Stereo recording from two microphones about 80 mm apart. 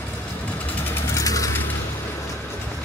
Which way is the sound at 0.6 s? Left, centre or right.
Left.